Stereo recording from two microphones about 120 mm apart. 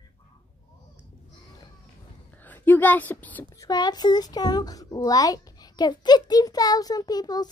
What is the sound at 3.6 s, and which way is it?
Speech, 35° left (ahead or behind).